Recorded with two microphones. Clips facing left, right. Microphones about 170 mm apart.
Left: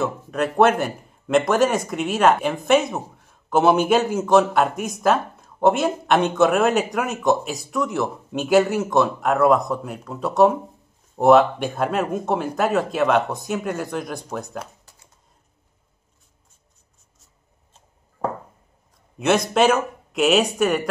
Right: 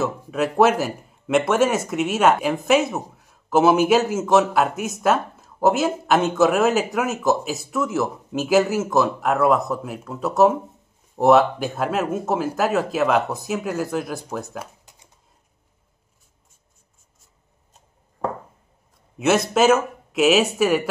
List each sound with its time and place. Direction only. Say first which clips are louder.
0.0 s speech: even; 5° right (ahead or behind)
18.2 s a sound: even; 5° left (ahead or behind)
19.1 s speech: even; 5° right (ahead or behind)